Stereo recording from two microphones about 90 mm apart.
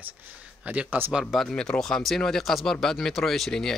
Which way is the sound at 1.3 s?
5° left (ahead or behind).